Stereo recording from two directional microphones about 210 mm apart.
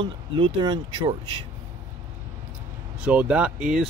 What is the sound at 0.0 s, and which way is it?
Speech, 20° right (ahead or behind).